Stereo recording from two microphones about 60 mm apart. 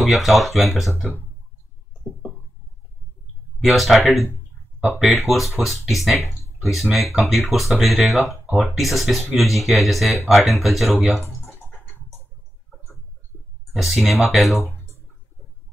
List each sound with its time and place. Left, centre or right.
0.1 s speech: centre
3.6 s speech: centre
8.5 s speech: right
8.7 s speech: centre
13.7 s speech: centre